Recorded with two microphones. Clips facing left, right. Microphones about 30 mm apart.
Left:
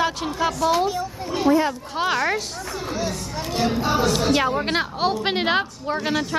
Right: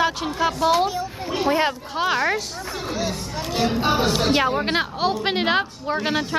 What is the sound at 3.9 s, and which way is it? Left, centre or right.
Speech, right.